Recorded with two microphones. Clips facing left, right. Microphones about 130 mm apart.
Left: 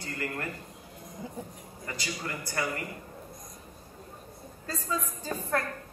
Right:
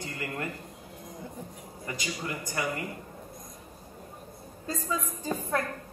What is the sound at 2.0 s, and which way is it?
Speech, 20° right (ahead or behind).